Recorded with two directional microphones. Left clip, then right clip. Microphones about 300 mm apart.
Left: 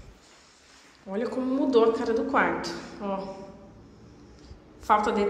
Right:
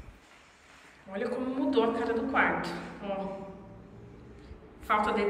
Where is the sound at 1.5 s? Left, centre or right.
Centre.